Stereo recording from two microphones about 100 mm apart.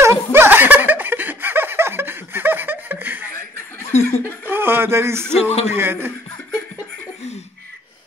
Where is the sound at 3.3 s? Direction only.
25° left (ahead or behind).